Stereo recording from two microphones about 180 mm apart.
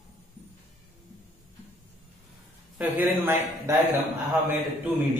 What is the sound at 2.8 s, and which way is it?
A man's voice, 10° right (ahead or behind).